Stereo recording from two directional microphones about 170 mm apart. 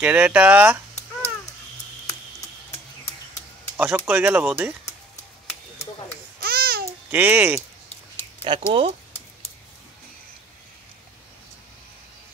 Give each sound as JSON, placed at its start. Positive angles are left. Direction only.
{"t": 0.0, "sound": "speech", "side_deg": -10}
{"t": 0.9, "sound": "a sound", "side_deg": 40}
{"t": 3.7, "sound": "speech", "side_deg": -10}
{"t": 6.4, "sound": "babbling", "side_deg": -65}
{"t": 7.1, "sound": "speech", "side_deg": -10}
{"t": 8.5, "sound": "speech", "side_deg": -30}